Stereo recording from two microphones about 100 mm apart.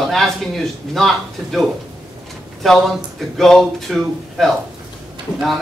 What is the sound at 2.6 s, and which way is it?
A man's voice, centre (ahead or behind).